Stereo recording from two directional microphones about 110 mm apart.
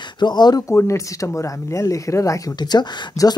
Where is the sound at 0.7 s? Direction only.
25° left (ahead or behind).